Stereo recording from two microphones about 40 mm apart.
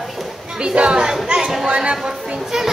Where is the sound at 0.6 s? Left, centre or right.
Right.